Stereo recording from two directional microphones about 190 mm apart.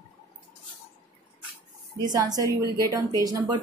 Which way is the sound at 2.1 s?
20° right (ahead or behind).